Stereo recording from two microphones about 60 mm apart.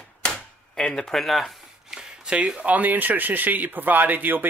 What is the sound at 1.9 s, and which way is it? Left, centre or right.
Speech, centre.